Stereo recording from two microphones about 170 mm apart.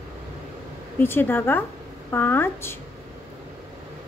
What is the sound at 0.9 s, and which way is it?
A woman's voice, 15° left (ahead or behind).